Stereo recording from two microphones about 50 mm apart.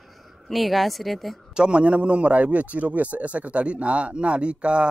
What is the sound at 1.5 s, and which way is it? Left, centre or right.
A man's voice, centre.